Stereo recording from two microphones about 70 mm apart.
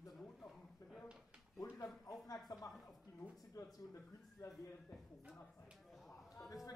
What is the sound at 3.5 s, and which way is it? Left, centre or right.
Speech, left.